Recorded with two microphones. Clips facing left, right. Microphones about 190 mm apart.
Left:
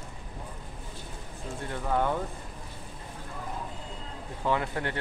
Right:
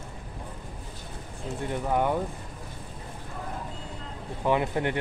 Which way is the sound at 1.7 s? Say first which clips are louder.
Right 2 dB; 15° right (ahead or behind).